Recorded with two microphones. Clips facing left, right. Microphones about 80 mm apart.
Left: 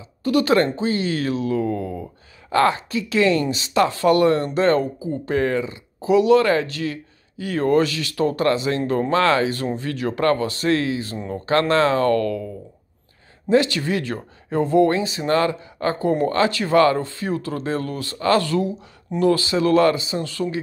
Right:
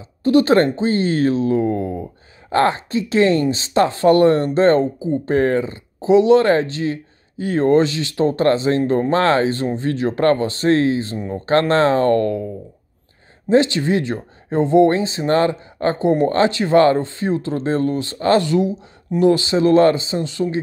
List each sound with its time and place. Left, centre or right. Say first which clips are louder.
0.2 s speech: right 4 dB; right
13.5 s speech: right 3 dB; right
16.0 s speech: right 4 dB; right